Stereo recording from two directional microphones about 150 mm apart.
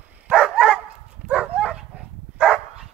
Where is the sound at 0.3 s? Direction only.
Centre (ahead or behind).